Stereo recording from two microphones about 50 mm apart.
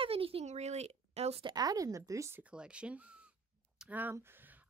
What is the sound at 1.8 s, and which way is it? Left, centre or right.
Speech, right.